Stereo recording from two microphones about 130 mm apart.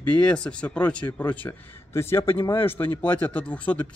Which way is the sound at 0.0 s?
10° left (ahead or behind).